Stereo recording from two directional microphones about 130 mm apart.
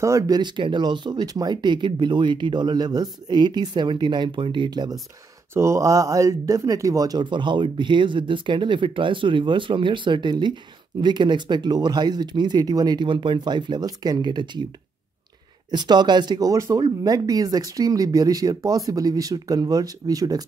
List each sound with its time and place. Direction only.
0.0 s speech: 25° right (ahead or behind)
0.4 s speech: 35° right (ahead or behind)
5.5 s speech: 20° right (ahead or behind)
15.7 s speech: 35° right (ahead or behind)